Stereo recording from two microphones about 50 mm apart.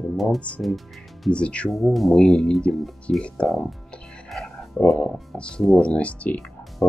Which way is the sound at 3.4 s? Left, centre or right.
Centre.